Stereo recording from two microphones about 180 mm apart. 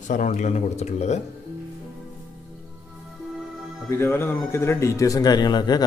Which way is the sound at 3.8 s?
15° left (ahead or behind).